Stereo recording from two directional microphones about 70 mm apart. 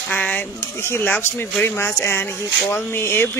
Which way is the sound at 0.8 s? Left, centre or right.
Left.